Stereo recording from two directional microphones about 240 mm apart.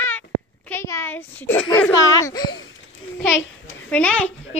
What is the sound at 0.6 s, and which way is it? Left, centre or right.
A woman's voice, centre.